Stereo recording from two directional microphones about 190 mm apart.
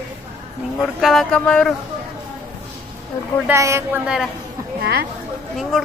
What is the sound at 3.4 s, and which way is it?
Speech, 15° right (ahead or behind).